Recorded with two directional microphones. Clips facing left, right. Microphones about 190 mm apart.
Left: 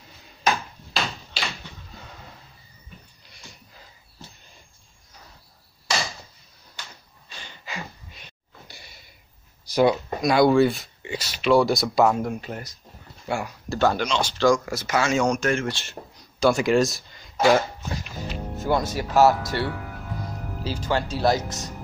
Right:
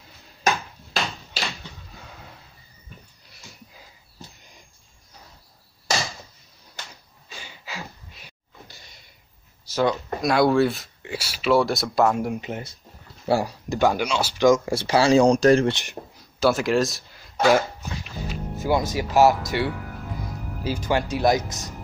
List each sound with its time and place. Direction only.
2.0 s a sound: centre (ahead or behind)
7.2 s a sound: 10° right (ahead or behind)
8.6 s a sound: 10° left (ahead or behind)
9.7 s speech: 10° left (ahead or behind)
10.2 s speech: centre (ahead or behind)
12.2 s speech: 15° right (ahead or behind)
13.3 s speech: 35° right (ahead or behind)
13.7 s speech: 15° right (ahead or behind)
14.4 s speech: 25° right (ahead or behind)
15.7 s speech: 15° right (ahead or behind)
16.3 s speech: centre (ahead or behind)
17.5 s a sound: centre (ahead or behind)
18.6 s speech: 10° right (ahead or behind)